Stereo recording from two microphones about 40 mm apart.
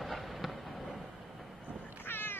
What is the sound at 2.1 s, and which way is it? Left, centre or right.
Cat, left.